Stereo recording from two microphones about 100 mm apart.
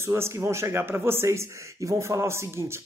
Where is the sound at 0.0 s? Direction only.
25° right (ahead or behind).